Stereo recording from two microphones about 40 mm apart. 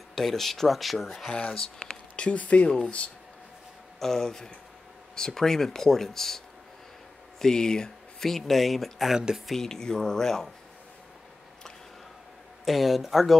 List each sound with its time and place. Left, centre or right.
0.1 s speech: centre
1.3 s speech: left
4.0 s speech: centre
9.1 s speech: centre
9.5 s speech: centre
12.6 s speech: centre